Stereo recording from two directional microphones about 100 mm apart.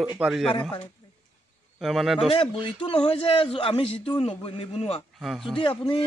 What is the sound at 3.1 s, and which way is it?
Speech, 90° left.